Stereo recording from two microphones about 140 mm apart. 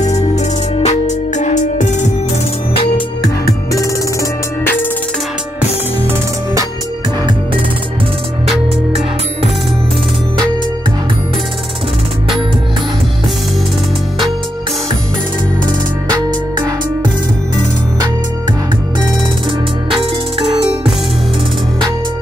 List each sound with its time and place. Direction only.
0.7 s music: 55° left (ahead or behind)
3.4 s music: 25° left (ahead or behind)
16.1 s music: 25° right (ahead or behind)
19.9 s music: 40° right (ahead or behind)